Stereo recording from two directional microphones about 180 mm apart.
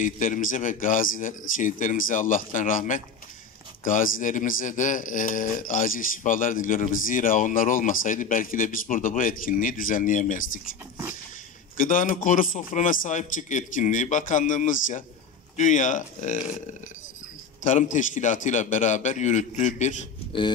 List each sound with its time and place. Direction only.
0.0 s speech: 50° left (ahead or behind)
11.7 s speech: 50° left (ahead or behind)
17.6 s speech: 45° left (ahead or behind)